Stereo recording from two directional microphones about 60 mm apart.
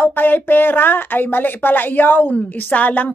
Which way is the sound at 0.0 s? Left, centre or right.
Left.